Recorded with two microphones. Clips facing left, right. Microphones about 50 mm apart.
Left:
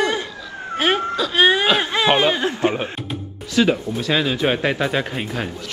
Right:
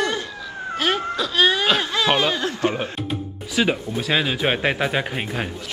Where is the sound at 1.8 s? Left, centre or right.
Left.